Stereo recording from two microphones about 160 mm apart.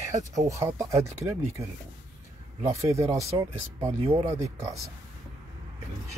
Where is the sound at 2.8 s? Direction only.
20° right (ahead or behind).